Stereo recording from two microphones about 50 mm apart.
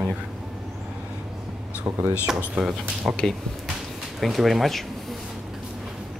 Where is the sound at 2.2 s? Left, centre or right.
Centre.